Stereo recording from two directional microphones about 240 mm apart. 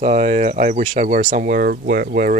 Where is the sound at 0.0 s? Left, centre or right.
Right.